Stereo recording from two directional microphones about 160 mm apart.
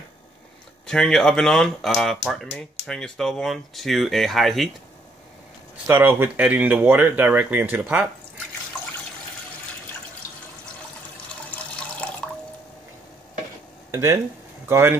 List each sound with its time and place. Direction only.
0.8 s speech: 5° left (ahead or behind)
5.9 s speech: 15° right (ahead or behind)
13.9 s speech: 15° right (ahead or behind)